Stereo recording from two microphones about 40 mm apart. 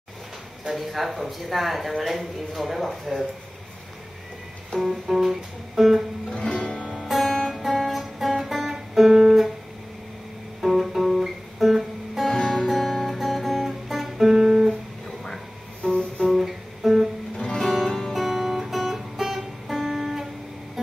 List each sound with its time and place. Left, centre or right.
0.7 s speech: centre
4.7 s speech: centre
6.3 s music: centre
6.6 s music: left
7.1 s music: centre
7.6 s music: centre
10.6 s music: centre
12.4 s music: left
12.6 s guitar: centre
15.0 s a sound: centre
15.8 s music: centre
16.2 s music: centre
17.6 s music: centre